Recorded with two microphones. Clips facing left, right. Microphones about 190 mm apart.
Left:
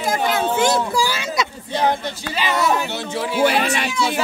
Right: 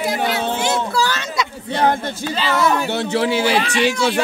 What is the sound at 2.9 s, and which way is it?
Speech, 75° right (ahead or behind).